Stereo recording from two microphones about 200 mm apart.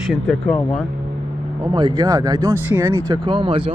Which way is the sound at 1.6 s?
20° right (ahead or behind).